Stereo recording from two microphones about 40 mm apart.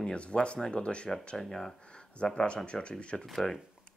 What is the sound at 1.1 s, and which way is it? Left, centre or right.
Speech, centre.